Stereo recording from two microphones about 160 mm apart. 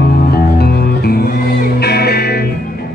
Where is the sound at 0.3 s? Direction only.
75° left (ahead or behind).